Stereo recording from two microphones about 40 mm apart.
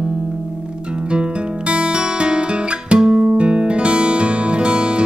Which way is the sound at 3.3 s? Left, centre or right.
Right.